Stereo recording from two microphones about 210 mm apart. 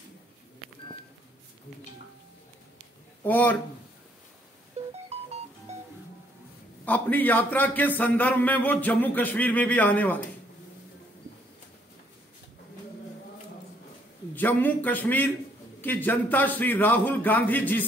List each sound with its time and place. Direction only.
3.3 s a man's voice: 10° left (ahead or behind)
4.8 s music: 30° right (ahead or behind)
6.8 s a man's voice: 10° left (ahead or behind)
14.3 s a man's voice: 10° left (ahead or behind)